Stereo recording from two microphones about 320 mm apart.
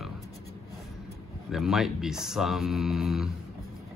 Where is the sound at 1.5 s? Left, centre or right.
Centre.